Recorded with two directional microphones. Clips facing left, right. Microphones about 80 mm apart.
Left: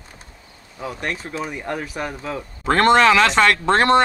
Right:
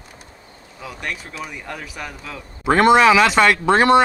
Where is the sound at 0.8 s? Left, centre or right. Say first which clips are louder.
Left 3 dB; left.